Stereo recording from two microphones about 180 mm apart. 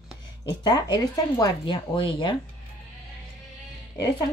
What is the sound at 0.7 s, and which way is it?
Speech, 20° left (ahead or behind).